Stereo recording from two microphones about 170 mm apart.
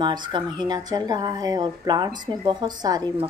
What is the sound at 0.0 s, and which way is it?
Speech, 25° right (ahead or behind).